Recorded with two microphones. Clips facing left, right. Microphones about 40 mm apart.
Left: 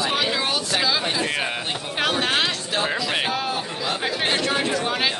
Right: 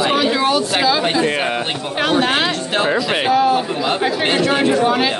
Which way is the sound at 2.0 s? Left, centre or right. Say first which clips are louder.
Right 6 dB; centre.